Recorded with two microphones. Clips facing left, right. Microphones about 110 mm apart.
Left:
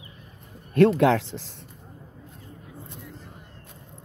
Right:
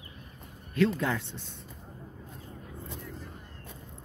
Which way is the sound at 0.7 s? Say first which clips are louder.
Left 9 dB; 65° left (ahead or behind).